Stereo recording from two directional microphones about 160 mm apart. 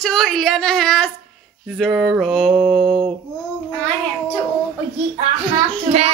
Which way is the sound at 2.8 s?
35° right (ahead or behind).